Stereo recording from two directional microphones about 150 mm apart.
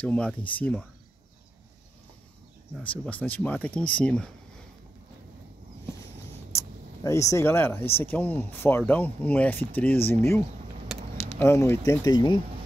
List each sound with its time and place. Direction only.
0.0 s speech: 10° left (ahead or behind)
2.8 s speech: 10° left (ahead or behind)
6.5 s speech: 20° left (ahead or behind)